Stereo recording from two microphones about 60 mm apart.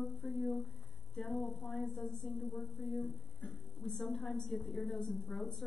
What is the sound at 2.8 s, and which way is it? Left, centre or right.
Speech, left.